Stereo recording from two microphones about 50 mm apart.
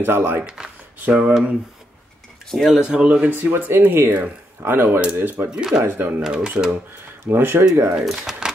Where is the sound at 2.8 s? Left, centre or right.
Centre.